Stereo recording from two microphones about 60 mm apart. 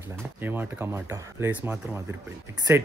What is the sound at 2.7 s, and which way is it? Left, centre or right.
Speech, right.